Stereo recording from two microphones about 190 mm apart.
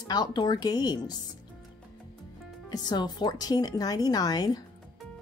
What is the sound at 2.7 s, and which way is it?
Speech, 20° left (ahead or behind).